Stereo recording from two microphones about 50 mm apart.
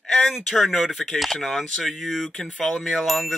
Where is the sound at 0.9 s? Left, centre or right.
Centre.